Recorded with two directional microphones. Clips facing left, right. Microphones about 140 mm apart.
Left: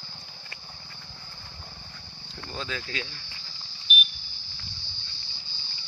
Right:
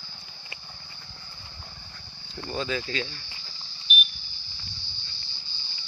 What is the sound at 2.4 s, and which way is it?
Speech, 5° right (ahead or behind).